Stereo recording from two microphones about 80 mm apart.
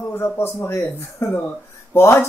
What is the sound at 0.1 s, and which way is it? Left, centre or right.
Speech, left.